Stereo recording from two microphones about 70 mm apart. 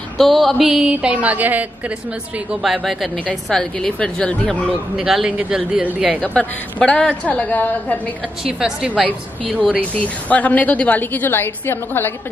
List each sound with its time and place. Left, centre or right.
0.2 s a woman's voice: centre; by 1.7 s right
2.6 s speech: centre
3.4 s speech: centre
4.9 s a woman's voice: centre
6.2 s a woman's voice: centre
8.5 s a woman's voice: centre
9.6 s a woman's voice: centre